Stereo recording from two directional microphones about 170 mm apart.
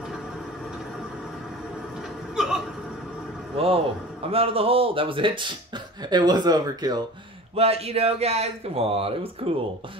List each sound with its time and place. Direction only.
2.3 s hiccup: centre (ahead or behind)
3.5 s speech: 35° right (ahead or behind)
7.5 s speech: 35° right (ahead or behind)